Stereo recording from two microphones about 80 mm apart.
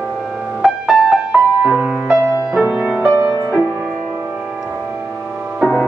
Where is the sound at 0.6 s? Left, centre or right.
Centre.